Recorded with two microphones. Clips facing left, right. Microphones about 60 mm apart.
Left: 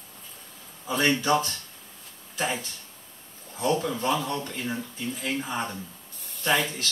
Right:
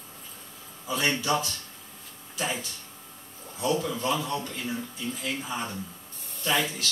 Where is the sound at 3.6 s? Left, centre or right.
Left.